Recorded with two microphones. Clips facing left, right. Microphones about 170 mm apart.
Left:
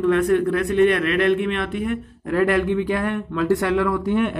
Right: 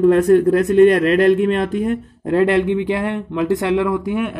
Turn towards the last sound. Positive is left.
turn(degrees=-10)  # may be behind; listen again after turning